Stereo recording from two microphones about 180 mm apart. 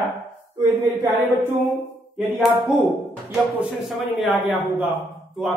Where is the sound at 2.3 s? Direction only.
5° right (ahead or behind).